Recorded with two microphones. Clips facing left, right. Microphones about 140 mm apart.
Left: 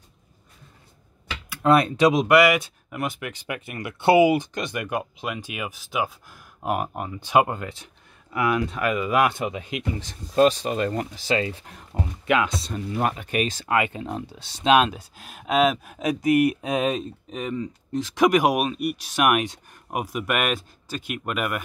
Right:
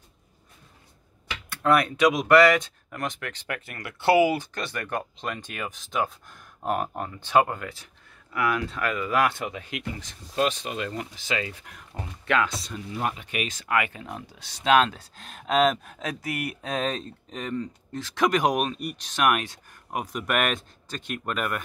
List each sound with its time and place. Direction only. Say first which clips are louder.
1.6 s speech: left 3 dB; 25° left (ahead or behind)
2.2 s speech: even; 10° left (ahead or behind)
10.0 s speech: left 8 dB; 40° left (ahead or behind)
12.3 s speech: left 2 dB; 15° left (ahead or behind)
12.7 s speech: left 7 dB; 50° left (ahead or behind)
13.3 s speech: left 4 dB; 35° left (ahead or behind); by 21.6 s 5° left (ahead or behind)